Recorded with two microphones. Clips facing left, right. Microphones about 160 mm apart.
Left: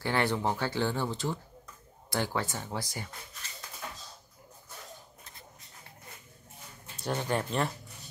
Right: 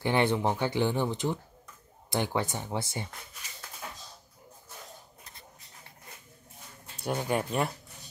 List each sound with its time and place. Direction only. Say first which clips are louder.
0.0 s speech: right 3 dB; 20° right (ahead or behind)
7.0 s speech: right 2 dB; 10° right (ahead or behind)